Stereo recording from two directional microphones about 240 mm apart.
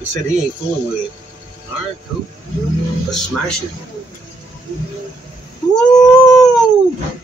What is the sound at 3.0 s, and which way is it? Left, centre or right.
Speech, centre.